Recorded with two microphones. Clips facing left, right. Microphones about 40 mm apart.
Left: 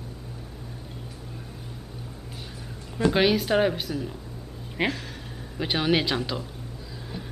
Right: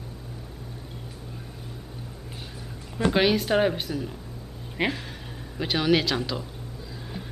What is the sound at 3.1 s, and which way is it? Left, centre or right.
A woman's voice, centre.